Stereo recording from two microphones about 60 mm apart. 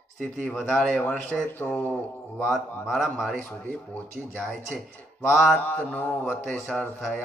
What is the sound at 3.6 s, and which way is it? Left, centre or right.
Mantra, left.